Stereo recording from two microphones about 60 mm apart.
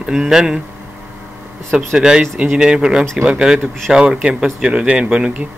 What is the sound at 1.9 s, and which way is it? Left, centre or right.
Speech, centre.